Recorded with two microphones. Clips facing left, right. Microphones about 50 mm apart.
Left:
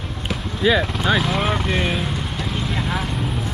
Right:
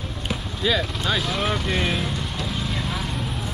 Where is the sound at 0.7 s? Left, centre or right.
Centre.